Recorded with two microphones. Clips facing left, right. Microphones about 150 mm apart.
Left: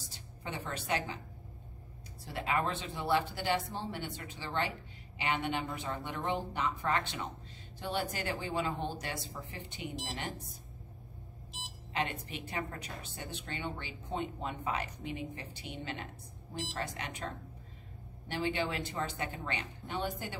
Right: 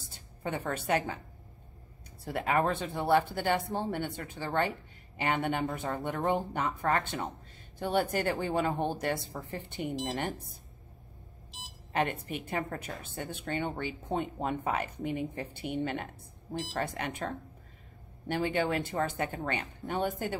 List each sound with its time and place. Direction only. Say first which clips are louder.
0.1 s a woman's voice: right 7 dB; 50° right (ahead or behind)
2.2 s a woman's voice: right 5 dB; 50° right (ahead or behind)
11.9 s a woman's voice: right 5 dB; 50° right (ahead or behind)
18.3 s a woman's voice: right 5 dB; 50° right (ahead or behind)